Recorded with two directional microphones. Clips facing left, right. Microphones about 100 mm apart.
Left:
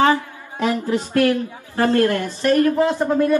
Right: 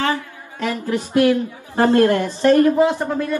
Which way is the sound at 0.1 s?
15° left (ahead or behind).